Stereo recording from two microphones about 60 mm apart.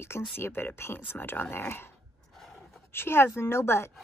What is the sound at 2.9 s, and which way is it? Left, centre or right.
Speech, left.